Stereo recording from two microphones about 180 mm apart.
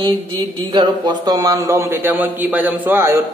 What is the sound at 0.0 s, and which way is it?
Speech, 25° right (ahead or behind).